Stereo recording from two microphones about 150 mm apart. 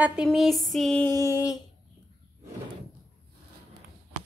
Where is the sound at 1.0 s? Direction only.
20° left (ahead or behind).